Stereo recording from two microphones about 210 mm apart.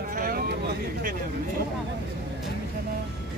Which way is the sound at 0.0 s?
45° right (ahead or behind).